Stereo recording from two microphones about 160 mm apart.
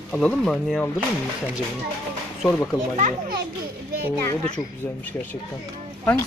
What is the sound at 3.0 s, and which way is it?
Speech, 55° right (ahead or behind).